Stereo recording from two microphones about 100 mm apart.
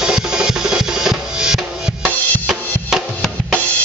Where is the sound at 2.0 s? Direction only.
10° right (ahead or behind).